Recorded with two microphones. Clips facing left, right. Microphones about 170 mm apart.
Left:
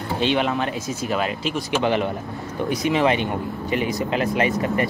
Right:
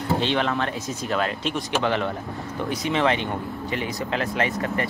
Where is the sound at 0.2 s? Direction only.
15° left (ahead or behind).